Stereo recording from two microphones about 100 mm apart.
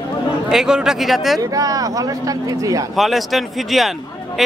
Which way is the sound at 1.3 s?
35° right (ahead or behind).